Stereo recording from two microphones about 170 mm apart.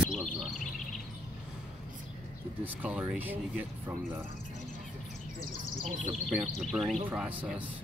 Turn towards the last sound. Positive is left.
turn(degrees=-5)  # may be behind; listen again after turning